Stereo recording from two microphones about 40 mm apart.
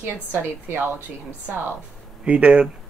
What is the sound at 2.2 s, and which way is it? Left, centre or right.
Speech, right.